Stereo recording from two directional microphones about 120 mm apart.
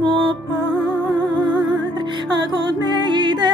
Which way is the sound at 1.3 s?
35° right (ahead or behind).